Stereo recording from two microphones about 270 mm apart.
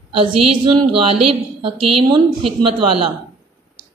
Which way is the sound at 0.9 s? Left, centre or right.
Right.